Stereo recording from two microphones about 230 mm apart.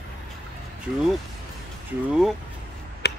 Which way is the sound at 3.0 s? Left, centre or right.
Left.